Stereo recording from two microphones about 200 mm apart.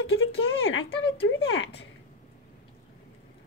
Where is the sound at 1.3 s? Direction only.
70° left (ahead or behind).